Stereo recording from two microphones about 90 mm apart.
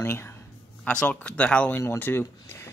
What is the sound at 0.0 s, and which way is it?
Speech, 25° left (ahead or behind).